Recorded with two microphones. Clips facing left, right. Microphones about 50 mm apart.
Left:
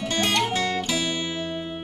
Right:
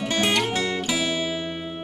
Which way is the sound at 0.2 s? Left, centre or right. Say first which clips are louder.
Even; centre.